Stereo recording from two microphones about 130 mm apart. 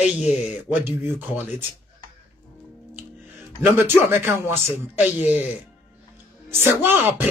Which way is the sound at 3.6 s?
15° right (ahead or behind).